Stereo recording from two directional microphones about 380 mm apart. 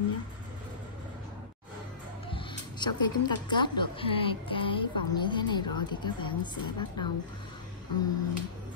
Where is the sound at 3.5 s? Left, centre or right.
Centre.